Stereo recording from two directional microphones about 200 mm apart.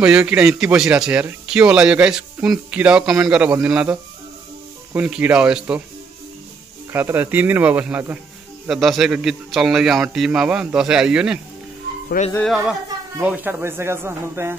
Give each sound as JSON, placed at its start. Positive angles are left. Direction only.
{"t": 0.0, "sound": "speech", "side_deg": -5}
{"t": 6.9, "sound": "speech", "side_deg": -10}
{"t": 12.2, "sound": "speech", "side_deg": 45}
{"t": 13.2, "sound": "speech", "side_deg": -10}